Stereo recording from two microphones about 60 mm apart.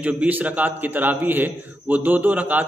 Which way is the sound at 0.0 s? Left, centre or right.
Right.